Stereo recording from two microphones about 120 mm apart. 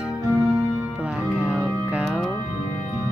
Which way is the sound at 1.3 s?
5° right (ahead or behind).